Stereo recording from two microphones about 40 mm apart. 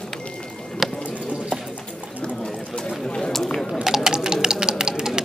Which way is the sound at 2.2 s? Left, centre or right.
Left.